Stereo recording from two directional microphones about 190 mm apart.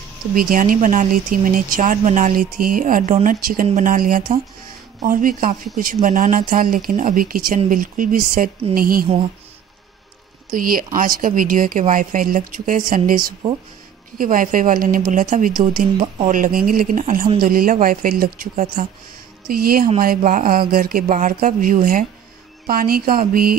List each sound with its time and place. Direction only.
0.3 s speech: 45° right (ahead or behind)
10.5 s speech: 50° right (ahead or behind)